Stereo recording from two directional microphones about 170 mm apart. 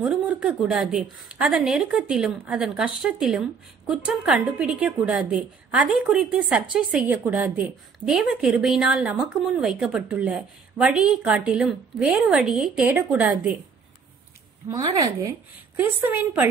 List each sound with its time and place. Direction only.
0.0 s a woman's voice: 5° right (ahead or behind)
14.6 s a woman's voice: 20° right (ahead or behind)